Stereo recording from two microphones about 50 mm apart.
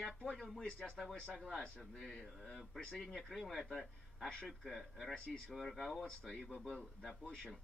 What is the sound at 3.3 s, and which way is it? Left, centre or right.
Speech, centre.